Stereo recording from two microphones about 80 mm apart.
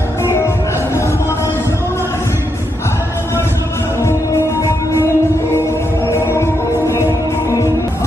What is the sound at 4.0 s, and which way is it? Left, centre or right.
Music, left.